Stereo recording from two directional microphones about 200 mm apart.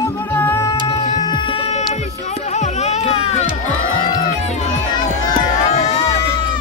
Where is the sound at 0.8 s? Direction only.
30° left (ahead or behind).